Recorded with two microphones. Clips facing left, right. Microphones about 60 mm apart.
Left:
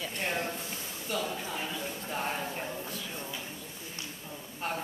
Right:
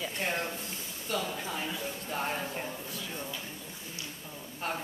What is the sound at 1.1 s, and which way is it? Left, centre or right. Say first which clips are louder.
Speech: right 1 dB; centre.